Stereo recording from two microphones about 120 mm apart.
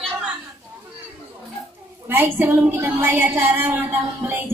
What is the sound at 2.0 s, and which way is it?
Speech, 15° right (ahead or behind).